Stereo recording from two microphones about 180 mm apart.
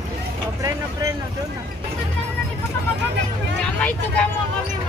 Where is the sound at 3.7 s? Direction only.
5° left (ahead or behind).